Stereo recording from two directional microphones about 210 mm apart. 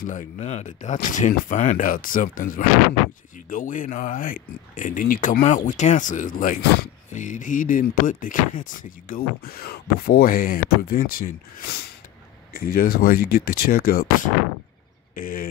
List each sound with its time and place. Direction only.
0.0 s speech: 40° left (ahead or behind)